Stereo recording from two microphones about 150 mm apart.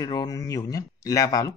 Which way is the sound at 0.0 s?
25° left (ahead or behind).